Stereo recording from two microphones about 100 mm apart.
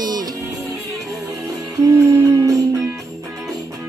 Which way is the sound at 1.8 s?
25° right (ahead or behind).